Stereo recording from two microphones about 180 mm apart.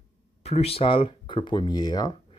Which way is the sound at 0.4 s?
35° left (ahead or behind).